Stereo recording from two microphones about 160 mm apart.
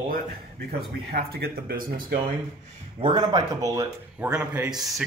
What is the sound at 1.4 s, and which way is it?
Speech, 65° right (ahead or behind).